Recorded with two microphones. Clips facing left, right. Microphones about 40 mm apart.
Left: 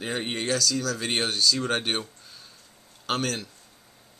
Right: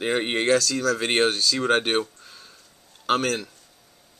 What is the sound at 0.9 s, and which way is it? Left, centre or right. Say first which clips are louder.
Speech: right 5 dB; right.